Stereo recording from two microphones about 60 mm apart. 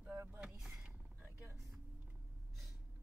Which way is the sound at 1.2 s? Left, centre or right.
Right.